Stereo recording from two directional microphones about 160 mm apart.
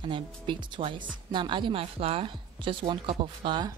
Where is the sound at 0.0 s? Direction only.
30° right (ahead or behind).